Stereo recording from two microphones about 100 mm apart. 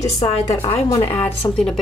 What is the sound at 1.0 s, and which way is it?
Speech, 20° left (ahead or behind).